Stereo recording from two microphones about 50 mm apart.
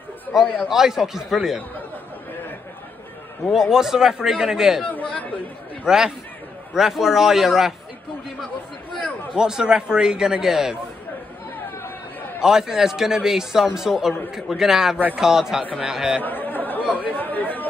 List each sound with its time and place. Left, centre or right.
0.3 s a man's voice: centre
3.5 s a man's voice: centre
4.9 s chatter: left
5.9 s a man's voice: centre
9.3 s a man's voice: centre
12.4 s a man's voice: centre
16.2 s chatter: left
16.9 s speech: left